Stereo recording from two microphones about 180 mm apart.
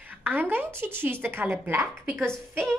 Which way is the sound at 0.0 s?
10° right (ahead or behind).